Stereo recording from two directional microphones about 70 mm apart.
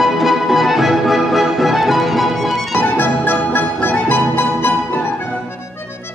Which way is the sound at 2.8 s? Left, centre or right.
Left.